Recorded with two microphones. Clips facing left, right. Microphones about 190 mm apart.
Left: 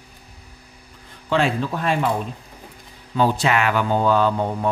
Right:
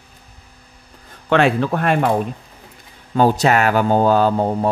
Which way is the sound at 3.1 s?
45° right (ahead or behind).